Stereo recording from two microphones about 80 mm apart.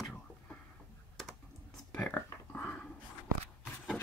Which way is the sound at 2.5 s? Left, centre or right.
Centre.